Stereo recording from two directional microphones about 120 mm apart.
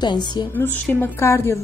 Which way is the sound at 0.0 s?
35° left (ahead or behind).